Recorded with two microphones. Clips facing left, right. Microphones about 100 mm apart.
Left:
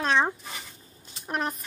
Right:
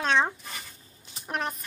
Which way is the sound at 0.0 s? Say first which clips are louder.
Left 1 dB; 5° left (ahead or behind).